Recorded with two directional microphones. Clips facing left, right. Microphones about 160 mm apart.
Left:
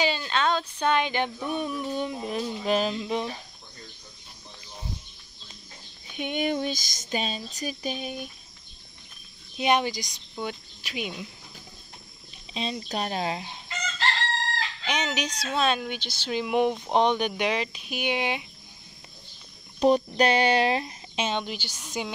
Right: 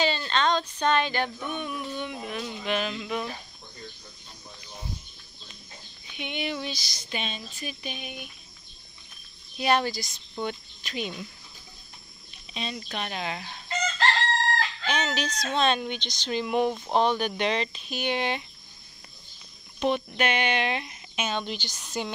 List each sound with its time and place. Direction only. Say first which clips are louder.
0.0 s speech: even; 10° left (ahead or behind)
1.4 s a sound: left 4 dB; 35° left (ahead or behind)
6.1 s female singing: left 5 dB; 45° left (ahead or behind)
7.5 s a sound: left 5 dB; 40° left (ahead or behind)
9.6 s speech: left 1 dB; 15° left (ahead or behind)
12.5 s speech: left 4 dB; 30° left (ahead or behind)
14.9 s speech: left 1 dB; 15° left (ahead or behind)
19.8 s a sound: left 5 dB; 35° left (ahead or behind)
21.4 s speech: even; 10° left (ahead or behind)